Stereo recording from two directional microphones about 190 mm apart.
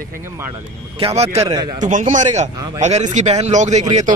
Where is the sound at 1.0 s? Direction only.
35° right (ahead or behind).